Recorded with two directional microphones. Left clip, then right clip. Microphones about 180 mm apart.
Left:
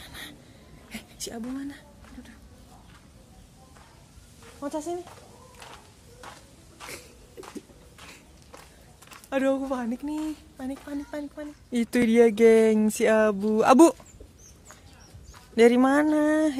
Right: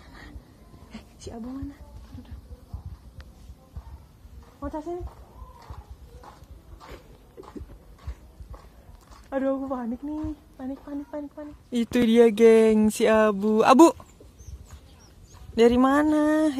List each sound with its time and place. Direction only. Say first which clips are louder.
0.0 s a sound: left 6 dB; 30° left (ahead or behind)
4.6 s speech: left 2 dB; 20° left (ahead or behind)
9.3 s speech: left 2 dB; 30° left (ahead or behind)
11.1 s speech: even; 35° left (ahead or behind)
11.7 s speech: right 1 dB; 10° left (ahead or behind)
15.5 s speech: even; 15° left (ahead or behind)